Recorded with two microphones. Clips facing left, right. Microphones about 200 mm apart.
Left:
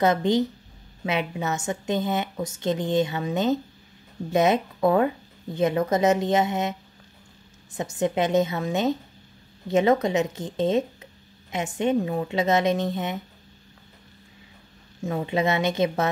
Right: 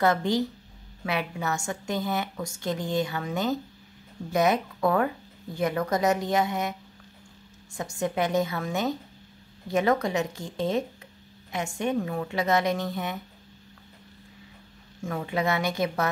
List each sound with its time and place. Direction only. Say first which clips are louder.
0.0 s a woman's voice: left 3 dB; 20° left (ahead or behind)
15.0 s a woman's voice: left 4 dB; 20° left (ahead or behind)